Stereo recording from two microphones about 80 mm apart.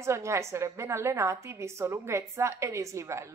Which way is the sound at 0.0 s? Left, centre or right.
Right.